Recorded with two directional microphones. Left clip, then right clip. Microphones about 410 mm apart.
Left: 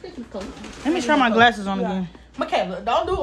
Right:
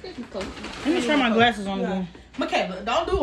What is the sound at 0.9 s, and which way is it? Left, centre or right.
Speech, centre.